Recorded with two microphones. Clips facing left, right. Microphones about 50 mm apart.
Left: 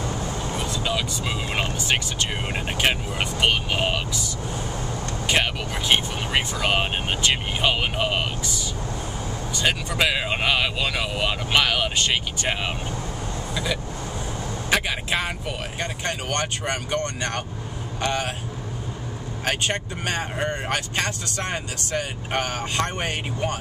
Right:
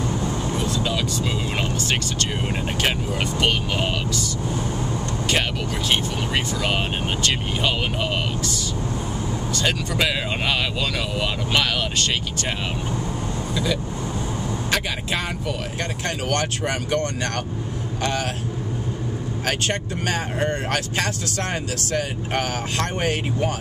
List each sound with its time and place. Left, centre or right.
0.6 s speech: centre
5.3 s speech: centre
14.7 s speech: centre
19.4 s speech: centre